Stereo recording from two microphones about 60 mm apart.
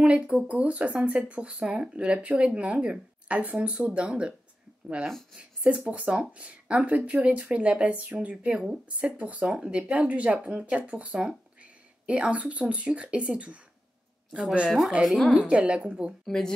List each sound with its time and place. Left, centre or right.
0.0 s speech: centre
5.3 s speech: centre
15.0 s speech: centre
15.3 s speech: right
16.3 s a woman's voice: centre